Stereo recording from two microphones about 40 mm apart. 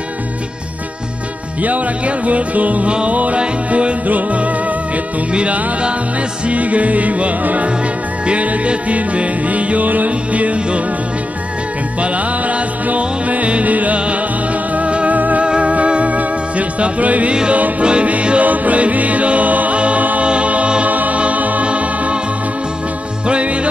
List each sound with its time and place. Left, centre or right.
1.6 s music: right
2.9 s music: right
12.0 s music: right
15.4 s music: right
17.3 s music: right
20.9 s music: right
23.2 s music: right